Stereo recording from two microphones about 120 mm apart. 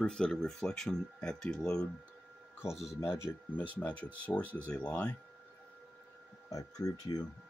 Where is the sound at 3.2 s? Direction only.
15° left (ahead or behind).